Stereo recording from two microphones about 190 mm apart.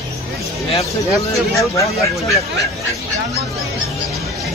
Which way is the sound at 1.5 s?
15° left (ahead or behind).